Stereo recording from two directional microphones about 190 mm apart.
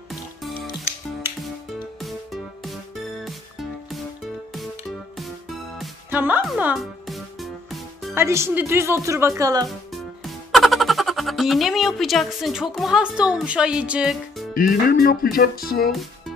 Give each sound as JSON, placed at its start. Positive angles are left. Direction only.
{"t": 0.1, "sound": "music", "side_deg": 0}
{"t": 2.0, "sound": "music", "side_deg": 0}
{"t": 6.0, "sound": "a woman's voice", "side_deg": -10}
{"t": 8.1, "sound": "speech", "side_deg": -15}
{"t": 9.7, "sound": "speech", "side_deg": 0}
{"t": 14.5, "sound": "speech", "side_deg": 45}
{"t": 15.9, "sound": "music", "side_deg": 0}